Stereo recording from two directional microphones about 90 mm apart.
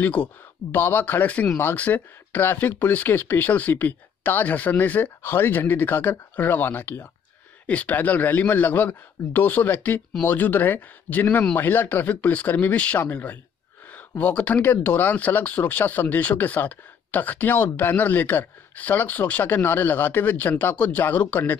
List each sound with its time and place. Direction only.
0.0 s speech: 20° left (ahead or behind)